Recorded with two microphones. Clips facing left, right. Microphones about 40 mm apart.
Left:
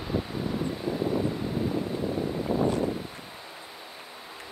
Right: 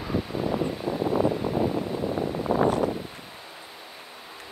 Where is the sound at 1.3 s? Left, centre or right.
Right.